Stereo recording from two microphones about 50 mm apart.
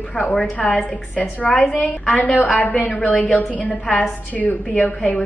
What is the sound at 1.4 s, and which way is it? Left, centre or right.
A woman's voice, left.